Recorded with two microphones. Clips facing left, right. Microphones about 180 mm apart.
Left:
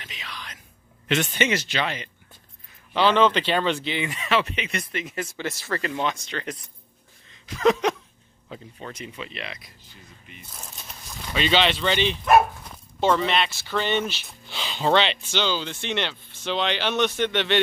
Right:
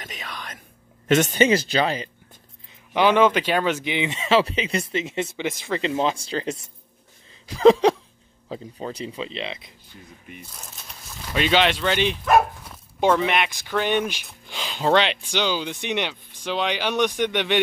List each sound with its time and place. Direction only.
0.0 s music: 45° right (ahead or behind)
1.0 s speech: 45° right (ahead or behind)
2.9 s speech: 15° right (ahead or behind)
11.3 s speech: 10° right (ahead or behind)